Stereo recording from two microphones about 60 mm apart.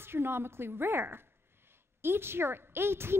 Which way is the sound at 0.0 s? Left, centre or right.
Right.